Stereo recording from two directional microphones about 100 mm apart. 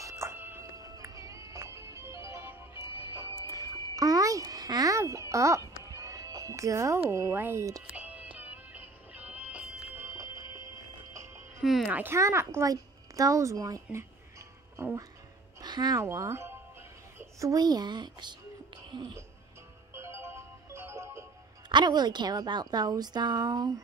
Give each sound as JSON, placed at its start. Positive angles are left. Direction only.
{"t": 0.0, "sound": "music", "side_deg": -30}
{"t": 1.0, "sound": "music", "side_deg": -35}
{"t": 7.9, "sound": "music", "side_deg": -15}
{"t": 10.0, "sound": "music", "side_deg": -30}
{"t": 11.9, "sound": "a child's voice", "side_deg": -20}
{"t": 15.6, "sound": "speech", "side_deg": -45}
{"t": 16.0, "sound": "speech", "side_deg": -35}
{"t": 19.9, "sound": "music", "side_deg": -25}
{"t": 21.6, "sound": "a woman's voice", "side_deg": -45}